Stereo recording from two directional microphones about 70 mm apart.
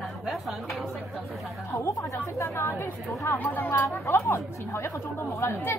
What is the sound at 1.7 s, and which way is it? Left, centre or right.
A woman's voice, left.